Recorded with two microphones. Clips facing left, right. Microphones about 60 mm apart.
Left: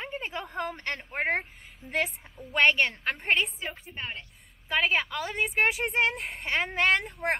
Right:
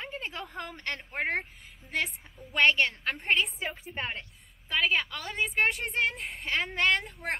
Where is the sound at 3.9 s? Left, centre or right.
Right.